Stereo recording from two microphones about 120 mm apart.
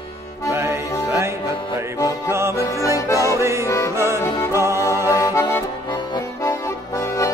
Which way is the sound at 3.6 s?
25° left (ahead or behind).